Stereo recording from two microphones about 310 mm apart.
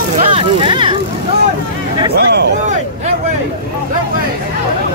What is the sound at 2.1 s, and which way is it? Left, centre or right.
Speech, right.